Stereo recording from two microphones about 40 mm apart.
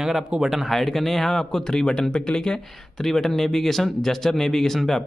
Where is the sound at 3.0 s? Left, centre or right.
Centre.